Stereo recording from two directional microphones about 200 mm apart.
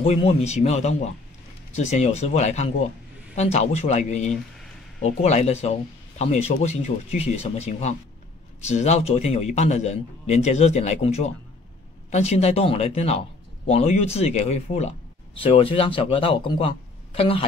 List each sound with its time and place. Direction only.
0.0 s speech: 30° left (ahead or behind)